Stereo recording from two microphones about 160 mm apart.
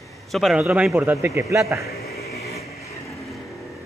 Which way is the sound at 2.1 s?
80° left.